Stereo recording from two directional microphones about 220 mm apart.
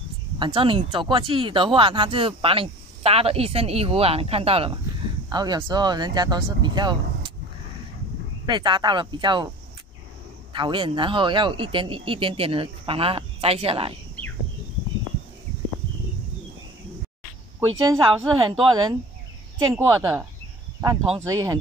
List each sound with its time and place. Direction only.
0.4 s speech: 25° right (ahead or behind)
8.5 s speech: 20° right (ahead or behind)
10.5 s speech: 20° right (ahead or behind)
17.9 s speech: 25° right (ahead or behind)